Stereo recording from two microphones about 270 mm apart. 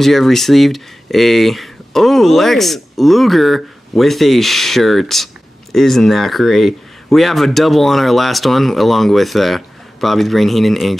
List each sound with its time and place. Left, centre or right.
0.0 s speech: centre